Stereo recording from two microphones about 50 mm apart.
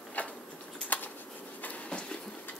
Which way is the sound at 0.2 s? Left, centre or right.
Left.